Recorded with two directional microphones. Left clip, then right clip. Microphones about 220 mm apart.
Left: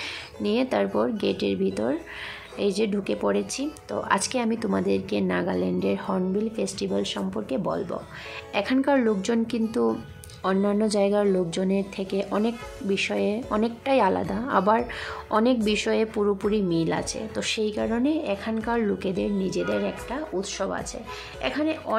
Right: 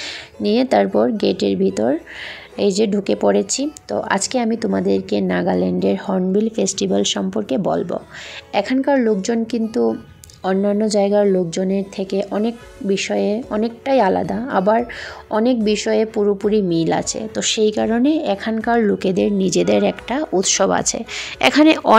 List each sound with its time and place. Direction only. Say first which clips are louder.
0.4 s speech: right 9 dB; 25° right (ahead or behind)
8.5 s a woman's voice: right 6 dB; 15° right (ahead or behind); by 21.9 s 45° right (ahead or behind)